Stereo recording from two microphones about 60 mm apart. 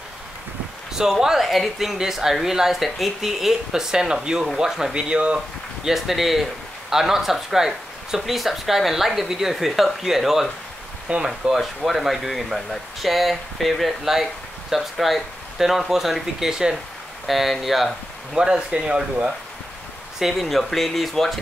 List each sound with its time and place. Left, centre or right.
0.9 s speech: centre
5.9 s speech: centre
20.2 s speech: centre